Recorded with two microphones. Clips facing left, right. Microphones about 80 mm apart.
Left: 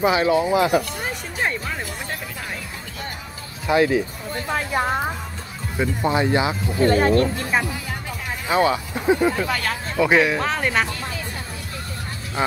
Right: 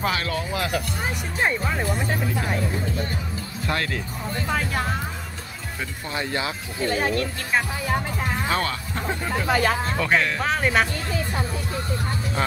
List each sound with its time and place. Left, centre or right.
0.0 s speech: centre
1.8 s speech: right
3.6 s speech: centre
4.7 s speech: left
5.8 s speech: left
6.8 s speech: left
8.5 s speech: centre
9.5 s speech: centre
9.9 s speech: centre
10.4 s speech: centre
12.4 s speech: centre